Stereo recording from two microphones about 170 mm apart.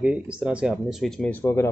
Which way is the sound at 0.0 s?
5° right (ahead or behind).